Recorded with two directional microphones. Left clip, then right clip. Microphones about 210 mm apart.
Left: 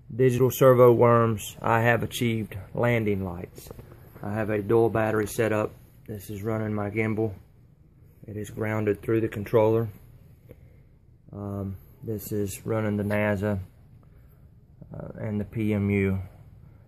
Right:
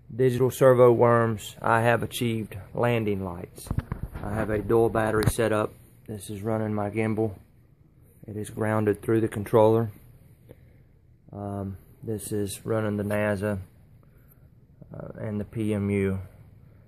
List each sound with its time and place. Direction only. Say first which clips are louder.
0.1 s speech: left 1 dB; centre (ahead or behind)
6.1 s speech: right 1 dB; 20° right (ahead or behind)
6.4 s speech: right 2 dB; 10° right (ahead or behind)
8.3 s speech: right 3 dB; 15° right (ahead or behind)
11.2 s speech: right 1 dB; 10° right (ahead or behind)
12.6 s speech: right 1 dB; 5° right (ahead or behind)
14.9 s speech: even; centre (ahead or behind)